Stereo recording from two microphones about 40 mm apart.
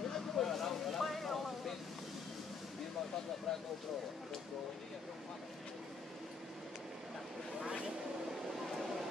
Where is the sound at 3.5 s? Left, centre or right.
Centre.